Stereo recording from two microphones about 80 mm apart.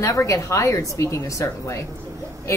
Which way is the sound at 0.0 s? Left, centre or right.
Left.